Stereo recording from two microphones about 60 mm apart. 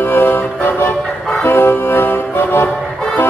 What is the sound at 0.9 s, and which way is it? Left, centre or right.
Music, centre.